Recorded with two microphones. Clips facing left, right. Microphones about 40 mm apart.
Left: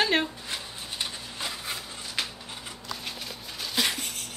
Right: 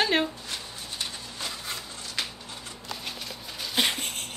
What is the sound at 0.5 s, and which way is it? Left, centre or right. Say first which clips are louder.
Wood: left 1 dB; centre.